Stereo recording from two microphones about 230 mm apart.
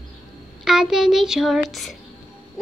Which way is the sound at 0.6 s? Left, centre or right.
Centre.